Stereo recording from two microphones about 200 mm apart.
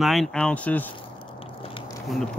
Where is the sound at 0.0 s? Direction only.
Centre (ahead or behind).